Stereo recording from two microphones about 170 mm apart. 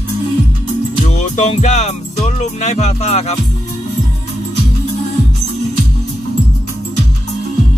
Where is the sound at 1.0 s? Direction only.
45° left (ahead or behind).